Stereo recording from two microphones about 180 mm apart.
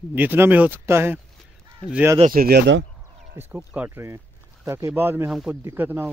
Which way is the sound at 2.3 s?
60° right (ahead or behind).